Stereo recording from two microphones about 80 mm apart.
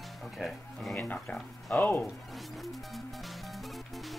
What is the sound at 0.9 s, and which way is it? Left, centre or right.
Speech, centre.